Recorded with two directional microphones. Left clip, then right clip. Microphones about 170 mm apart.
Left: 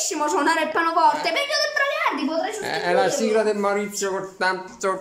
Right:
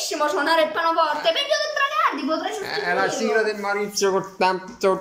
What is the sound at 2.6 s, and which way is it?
Speech, 25° left (ahead or behind).